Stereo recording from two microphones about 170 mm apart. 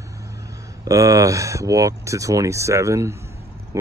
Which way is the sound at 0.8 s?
20° right (ahead or behind).